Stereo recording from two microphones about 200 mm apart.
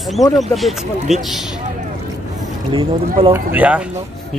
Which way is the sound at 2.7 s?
25° right (ahead or behind).